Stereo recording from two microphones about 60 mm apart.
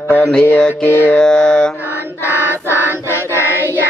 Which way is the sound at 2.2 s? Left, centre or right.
Right.